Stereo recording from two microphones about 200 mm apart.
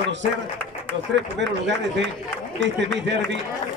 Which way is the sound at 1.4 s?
60° right (ahead or behind).